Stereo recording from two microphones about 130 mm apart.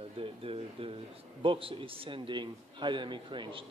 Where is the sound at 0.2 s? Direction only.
45° right (ahead or behind).